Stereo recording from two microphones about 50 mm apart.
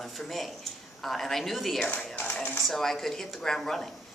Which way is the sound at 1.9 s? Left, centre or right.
Left.